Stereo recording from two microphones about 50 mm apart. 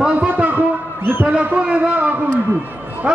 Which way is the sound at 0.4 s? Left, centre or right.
Right.